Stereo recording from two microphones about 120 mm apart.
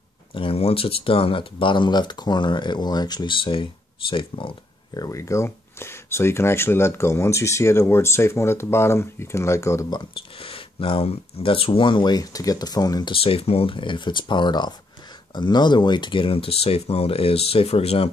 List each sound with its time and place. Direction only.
0.3 s speech: 50° left (ahead or behind)
4.9 s speech: 30° left (ahead or behind)
9.9 s speech: 50° left (ahead or behind); by 13.1 s 35° left (ahead or behind)
13.1 s speech: 50° left (ahead or behind)